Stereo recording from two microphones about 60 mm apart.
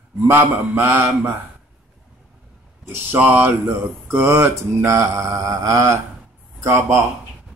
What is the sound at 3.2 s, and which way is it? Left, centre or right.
Mantra, right.